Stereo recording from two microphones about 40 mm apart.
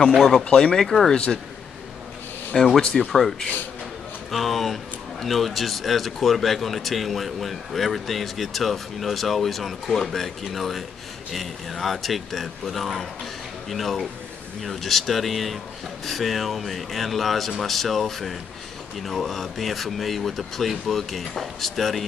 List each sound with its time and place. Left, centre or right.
0.2 s speech: centre
1.1 s speech: left
2.5 s speech: centre